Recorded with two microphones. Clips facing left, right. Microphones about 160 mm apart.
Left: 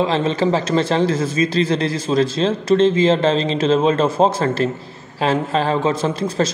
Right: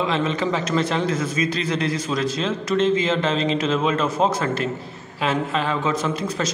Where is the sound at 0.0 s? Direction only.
30° left (ahead or behind).